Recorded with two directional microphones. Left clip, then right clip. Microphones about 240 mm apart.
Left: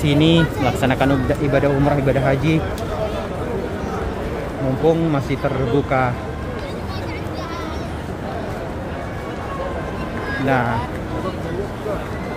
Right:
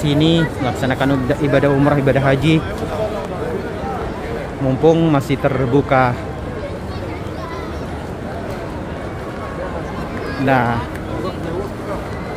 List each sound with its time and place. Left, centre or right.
0.0 s speech: centre
4.8 s speech: centre
10.4 s speech: centre